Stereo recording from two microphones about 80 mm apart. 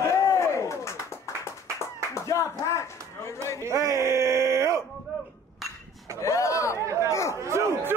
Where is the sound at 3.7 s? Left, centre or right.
Right.